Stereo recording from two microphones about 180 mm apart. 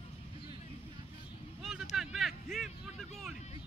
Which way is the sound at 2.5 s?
Centre (ahead or behind).